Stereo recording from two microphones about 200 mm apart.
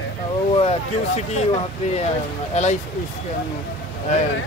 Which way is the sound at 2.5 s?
35° left (ahead or behind).